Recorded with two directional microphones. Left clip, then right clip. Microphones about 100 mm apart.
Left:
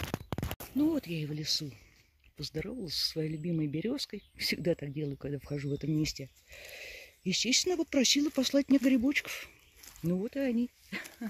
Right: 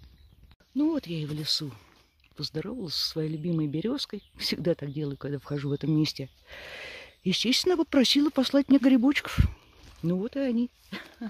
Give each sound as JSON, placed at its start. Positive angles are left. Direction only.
{"t": 0.7, "sound": "speech", "side_deg": 0}
{"t": 1.0, "sound": "speech", "side_deg": -20}
{"t": 1.5, "sound": "speech", "side_deg": -35}
{"t": 2.3, "sound": "speech", "side_deg": -25}
{"t": 5.6, "sound": "speech", "side_deg": -30}
{"t": 5.9, "sound": "speech", "side_deg": -45}
{"t": 8.3, "sound": "speech", "side_deg": -30}
{"t": 9.0, "sound": "speech", "side_deg": -50}
{"t": 10.0, "sound": "speech", "side_deg": -20}